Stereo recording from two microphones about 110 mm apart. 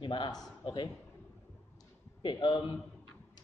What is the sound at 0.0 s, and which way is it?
Speech, 50° left (ahead or behind).